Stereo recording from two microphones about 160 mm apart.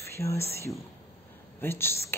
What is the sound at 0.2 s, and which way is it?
Speech, 15° left (ahead or behind).